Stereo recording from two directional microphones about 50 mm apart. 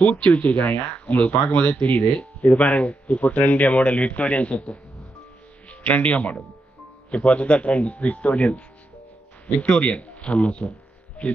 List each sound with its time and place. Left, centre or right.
0.0 s speech: left